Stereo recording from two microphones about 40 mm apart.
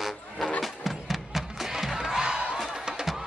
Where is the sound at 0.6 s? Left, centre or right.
Centre; by 2.6 s right.